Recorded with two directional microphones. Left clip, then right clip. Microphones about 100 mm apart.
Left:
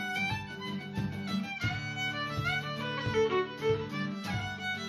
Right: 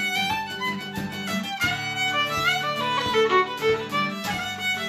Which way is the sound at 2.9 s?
15° right (ahead or behind).